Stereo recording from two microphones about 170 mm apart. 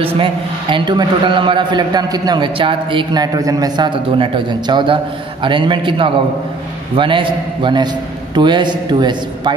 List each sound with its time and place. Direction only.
0.0 s a man's voice: 30° right (ahead or behind)